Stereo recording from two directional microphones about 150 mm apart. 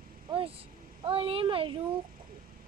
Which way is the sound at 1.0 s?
35° right (ahead or behind).